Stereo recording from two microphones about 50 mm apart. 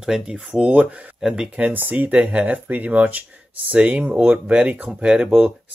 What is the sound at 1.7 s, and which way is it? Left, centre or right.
Speech, right.